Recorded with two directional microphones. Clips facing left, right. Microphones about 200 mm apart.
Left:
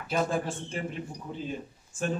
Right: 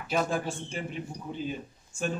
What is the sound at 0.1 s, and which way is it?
Speech, centre (ahead or behind).